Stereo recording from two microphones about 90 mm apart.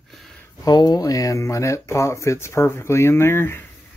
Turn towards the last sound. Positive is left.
turn(degrees=25)  # may be behind; listen again after turning